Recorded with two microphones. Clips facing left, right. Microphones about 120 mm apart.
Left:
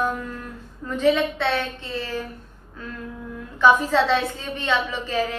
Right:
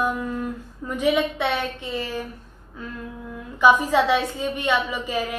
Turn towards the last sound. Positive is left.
turn(degrees=-15)  # may be behind; listen again after turning